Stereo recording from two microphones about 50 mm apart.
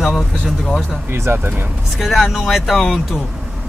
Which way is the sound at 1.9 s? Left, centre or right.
Centre.